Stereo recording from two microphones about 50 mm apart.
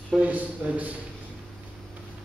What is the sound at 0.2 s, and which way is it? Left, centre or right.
Speech, right.